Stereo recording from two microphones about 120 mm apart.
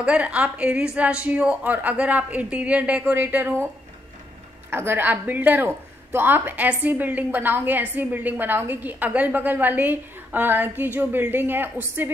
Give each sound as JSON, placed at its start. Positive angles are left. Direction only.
{"t": 0.0, "sound": "a woman's voice", "side_deg": -10}
{"t": 4.6, "sound": "a woman's voice", "side_deg": -20}